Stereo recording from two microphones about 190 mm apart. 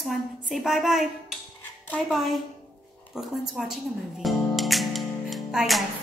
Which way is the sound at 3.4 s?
Centre (ahead or behind).